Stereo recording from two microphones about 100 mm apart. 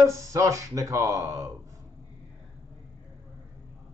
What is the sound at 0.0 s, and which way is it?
Speech, 30° right (ahead or behind).